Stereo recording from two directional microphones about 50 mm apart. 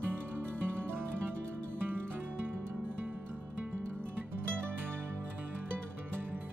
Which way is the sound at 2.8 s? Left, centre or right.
Right.